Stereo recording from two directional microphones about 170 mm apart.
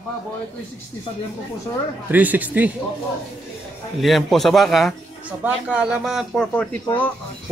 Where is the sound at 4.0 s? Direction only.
Centre (ahead or behind).